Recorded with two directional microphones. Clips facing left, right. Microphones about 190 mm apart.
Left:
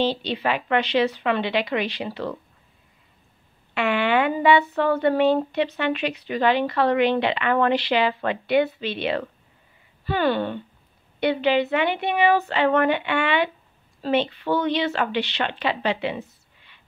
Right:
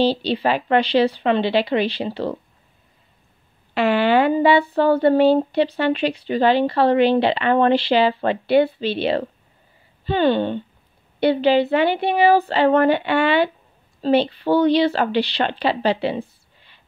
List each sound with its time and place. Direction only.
0.0 s speech: 35° right (ahead or behind)
3.7 s speech: 35° right (ahead or behind)